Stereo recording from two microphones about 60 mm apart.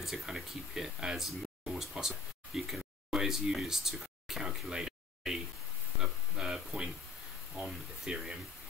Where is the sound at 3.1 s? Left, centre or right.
Centre.